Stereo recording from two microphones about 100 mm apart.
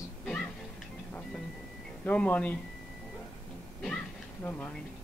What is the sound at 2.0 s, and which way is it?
Speech, 15° left (ahead or behind).